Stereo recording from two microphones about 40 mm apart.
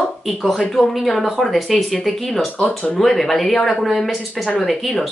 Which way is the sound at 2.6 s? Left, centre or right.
Left.